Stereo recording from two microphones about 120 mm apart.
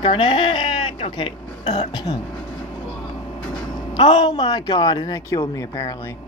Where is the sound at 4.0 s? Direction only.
40° left (ahead or behind).